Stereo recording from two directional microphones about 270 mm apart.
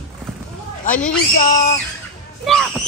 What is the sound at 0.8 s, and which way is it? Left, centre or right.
Speech, left.